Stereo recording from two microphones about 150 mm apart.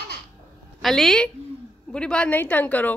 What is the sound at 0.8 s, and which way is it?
A woman's voice, centre (ahead or behind).